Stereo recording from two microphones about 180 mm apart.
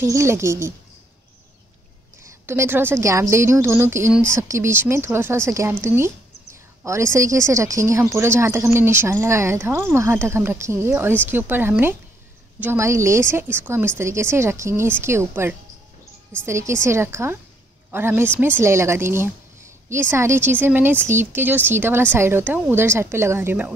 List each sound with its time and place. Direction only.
0.0 s speech: 15° right (ahead or behind)
2.4 s speech: 15° right (ahead or behind)